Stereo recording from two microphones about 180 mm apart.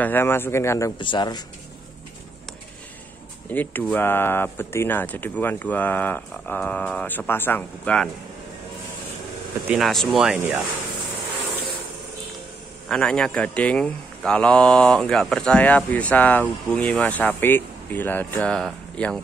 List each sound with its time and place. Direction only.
0.0 s speech: 10° left (ahead or behind)
3.4 s speech: 10° left (ahead or behind)
9.7 s speech: centre (ahead or behind)
12.8 s speech: 5° left (ahead or behind)